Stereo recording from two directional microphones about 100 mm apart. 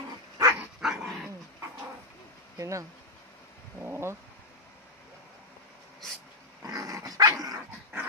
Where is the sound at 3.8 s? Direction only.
25° right (ahead or behind).